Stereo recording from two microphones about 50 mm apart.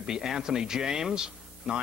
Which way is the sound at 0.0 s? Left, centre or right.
Centre.